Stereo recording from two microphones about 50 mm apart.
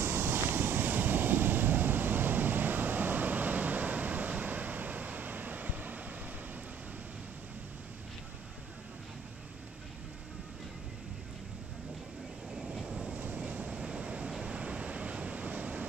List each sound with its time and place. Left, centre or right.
0.0 s waves: right
12.5 s vehicle: right
13.2 s waves: right
14.4 s a sound: right